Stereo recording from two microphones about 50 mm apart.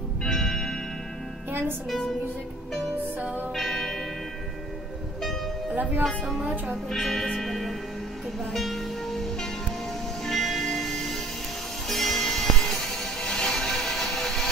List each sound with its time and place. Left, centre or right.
0.2 s music: centre
1.5 s music: right
3.2 s speech: right
3.5 s music: centre
5.8 s speech: right
6.9 s speech: centre
7.3 s music: centre